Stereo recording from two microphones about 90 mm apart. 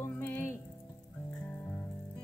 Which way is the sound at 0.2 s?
20° left (ahead or behind).